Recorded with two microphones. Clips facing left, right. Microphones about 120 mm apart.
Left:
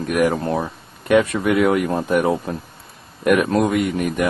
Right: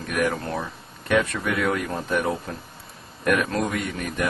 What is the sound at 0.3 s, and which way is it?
Speech, 25° left (ahead or behind).